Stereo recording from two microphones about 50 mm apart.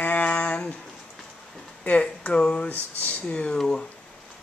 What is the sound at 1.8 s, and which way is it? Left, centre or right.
Speech, left.